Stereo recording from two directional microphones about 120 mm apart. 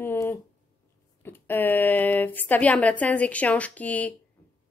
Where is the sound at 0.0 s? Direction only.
15° left (ahead or behind).